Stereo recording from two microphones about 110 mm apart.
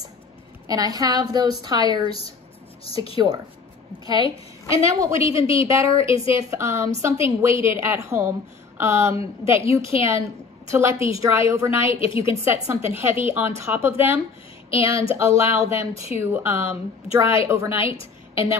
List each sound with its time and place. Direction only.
0.7 s a woman's voice: 35° right (ahead or behind)
2.8 s speech: 60° left (ahead or behind)
4.0 s a woman's voice: 35° right (ahead or behind)
5.4 s a woman's voice: 55° left (ahead or behind)
5.7 s a woman's voice: 30° right (ahead or behind)